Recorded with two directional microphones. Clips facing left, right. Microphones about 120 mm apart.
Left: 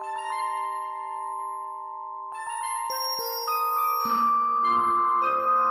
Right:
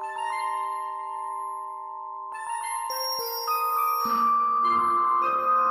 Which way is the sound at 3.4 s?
15° right (ahead or behind).